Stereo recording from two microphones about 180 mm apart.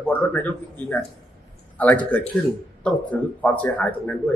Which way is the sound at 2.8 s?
10° left (ahead or behind).